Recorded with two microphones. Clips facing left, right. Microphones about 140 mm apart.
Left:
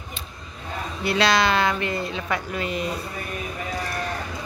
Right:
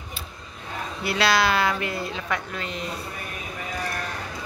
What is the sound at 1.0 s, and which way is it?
Speech, 5° right (ahead or behind).